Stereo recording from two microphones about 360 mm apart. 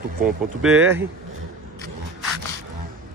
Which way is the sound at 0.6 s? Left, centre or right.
Centre.